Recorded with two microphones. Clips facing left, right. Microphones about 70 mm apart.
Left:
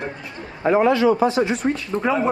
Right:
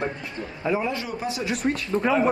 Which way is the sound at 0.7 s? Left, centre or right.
Left.